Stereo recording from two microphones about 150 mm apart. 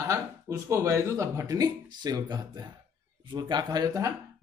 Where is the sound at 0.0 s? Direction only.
20° right (ahead or behind).